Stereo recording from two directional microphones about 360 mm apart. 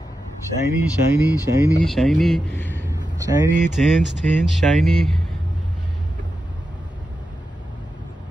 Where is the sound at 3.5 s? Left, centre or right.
Centre.